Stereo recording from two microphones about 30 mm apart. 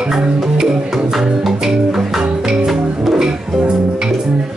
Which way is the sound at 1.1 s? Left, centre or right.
Centre.